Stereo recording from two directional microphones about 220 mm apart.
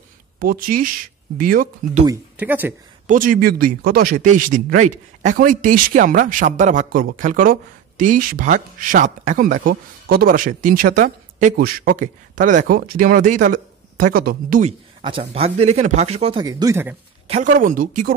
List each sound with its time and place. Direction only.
0.4 s speech: 40° right (ahead or behind)
2.0 s speech: 10° right (ahead or behind)
3.1 s speech: 40° right (ahead or behind); by 16.9 s 15° right (ahead or behind)
17.3 s speech: 35° right (ahead or behind)